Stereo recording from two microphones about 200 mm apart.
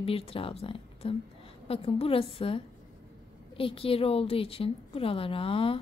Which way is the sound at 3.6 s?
25° left (ahead or behind).